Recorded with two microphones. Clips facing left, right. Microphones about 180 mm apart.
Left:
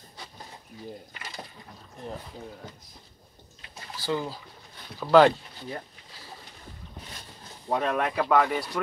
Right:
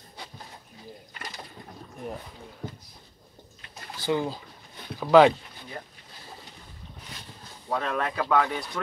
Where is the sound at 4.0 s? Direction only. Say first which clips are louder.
Right 3 dB; 20° right (ahead or behind).